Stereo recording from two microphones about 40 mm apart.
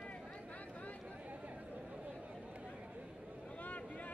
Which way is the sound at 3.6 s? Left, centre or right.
Left.